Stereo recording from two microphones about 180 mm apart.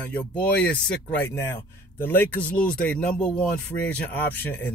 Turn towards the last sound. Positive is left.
turn(degrees=10)  # may be behind; listen again after turning